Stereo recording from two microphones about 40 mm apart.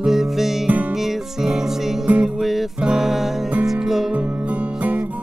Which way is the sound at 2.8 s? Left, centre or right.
Centre.